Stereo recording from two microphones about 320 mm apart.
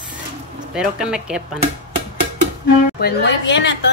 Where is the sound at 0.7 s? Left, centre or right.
Centre.